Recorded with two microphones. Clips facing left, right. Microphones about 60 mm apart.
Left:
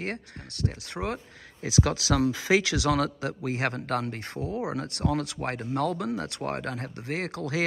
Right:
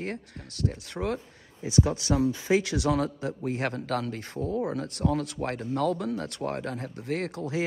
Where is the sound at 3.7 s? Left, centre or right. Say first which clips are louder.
Even; left.